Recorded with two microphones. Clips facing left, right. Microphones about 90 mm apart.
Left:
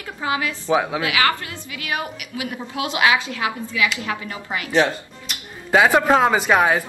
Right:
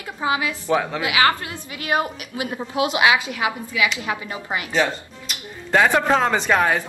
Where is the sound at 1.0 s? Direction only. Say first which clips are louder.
Right 1 dB; 25° right (ahead or behind).